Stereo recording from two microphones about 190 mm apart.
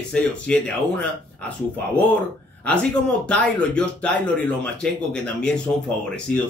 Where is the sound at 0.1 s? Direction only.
5° left (ahead or behind).